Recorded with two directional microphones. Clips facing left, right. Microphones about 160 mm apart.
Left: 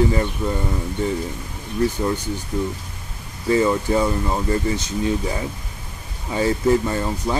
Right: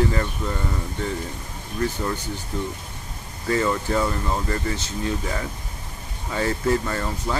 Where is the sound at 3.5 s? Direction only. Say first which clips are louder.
Left 4 dB; 15° left (ahead or behind).